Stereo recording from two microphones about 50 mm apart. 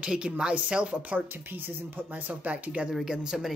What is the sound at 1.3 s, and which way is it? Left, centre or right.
Speech, right.